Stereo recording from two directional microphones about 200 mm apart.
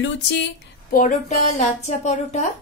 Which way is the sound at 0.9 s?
40° left (ahead or behind).